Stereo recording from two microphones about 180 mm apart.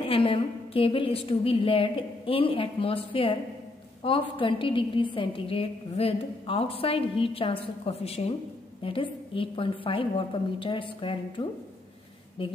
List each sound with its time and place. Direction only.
0.0 s a woman's voice: 30° left (ahead or behind)